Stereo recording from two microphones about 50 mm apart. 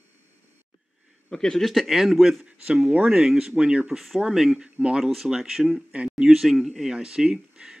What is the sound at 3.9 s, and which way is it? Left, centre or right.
Speech, centre.